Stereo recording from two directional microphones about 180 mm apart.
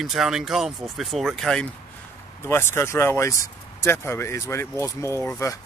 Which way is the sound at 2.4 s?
15° left (ahead or behind).